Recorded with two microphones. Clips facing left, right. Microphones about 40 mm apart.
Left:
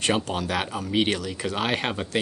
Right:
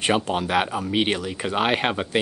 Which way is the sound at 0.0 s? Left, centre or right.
Centre.